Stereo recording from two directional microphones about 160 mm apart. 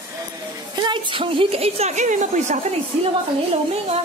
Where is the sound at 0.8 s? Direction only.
30° right (ahead or behind); by 2.6 s 50° right (ahead or behind).